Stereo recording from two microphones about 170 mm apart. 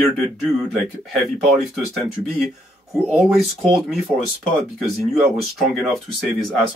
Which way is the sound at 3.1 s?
5° right (ahead or behind).